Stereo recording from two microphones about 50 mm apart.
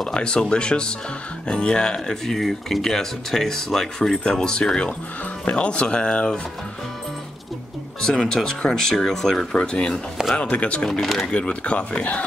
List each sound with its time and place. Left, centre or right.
0.1 s speech: centre
8.1 s speech: centre
10.9 s speech: centre
11.3 s speech: left